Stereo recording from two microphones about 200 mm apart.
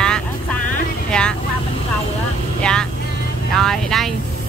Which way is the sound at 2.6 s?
5° left (ahead or behind).